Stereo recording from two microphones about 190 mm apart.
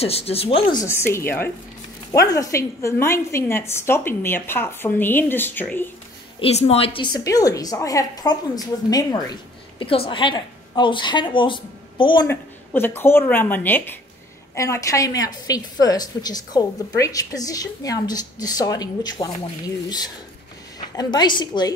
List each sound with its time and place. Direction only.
0.0 s speech: 30° left (ahead or behind)
0.8 s a woman's voice: 10° left (ahead or behind)
6.4 s speech: 35° left (ahead or behind)
7.2 s a woman's voice: 20° left (ahead or behind)
12.3 s a woman's voice: 10° left (ahead or behind)
20.9 s a woman's voice: 20° left (ahead or behind)